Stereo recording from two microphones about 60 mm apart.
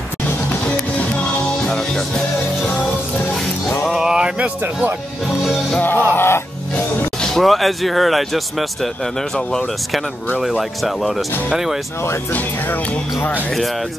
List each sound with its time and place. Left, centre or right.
1.7 s music: centre
3.8 s music: centre
5.4 s speech: centre
5.8 s music: left
6.1 s music: left
7.2 s speech: centre
10.4 s speech: centre
12.3 s speech: left